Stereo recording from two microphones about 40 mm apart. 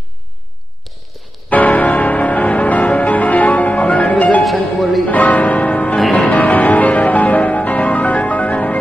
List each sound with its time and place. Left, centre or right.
1.5 s music: left
4.4 s music: centre
5.0 s music: left